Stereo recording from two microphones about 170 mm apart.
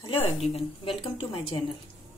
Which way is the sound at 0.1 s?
35° left (ahead or behind).